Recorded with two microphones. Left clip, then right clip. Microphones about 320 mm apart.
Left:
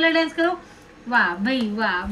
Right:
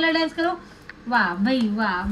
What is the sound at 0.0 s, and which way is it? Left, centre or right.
Speech, right.